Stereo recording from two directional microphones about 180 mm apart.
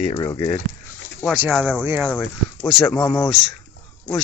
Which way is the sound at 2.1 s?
10° left (ahead or behind).